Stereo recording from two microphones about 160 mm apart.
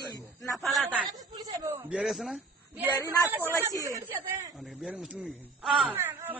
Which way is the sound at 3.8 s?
20° right (ahead or behind).